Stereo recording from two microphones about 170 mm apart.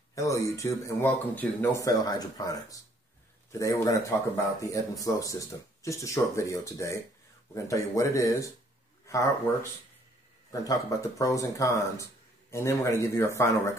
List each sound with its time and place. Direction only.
0.1 s speech: 20° left (ahead or behind)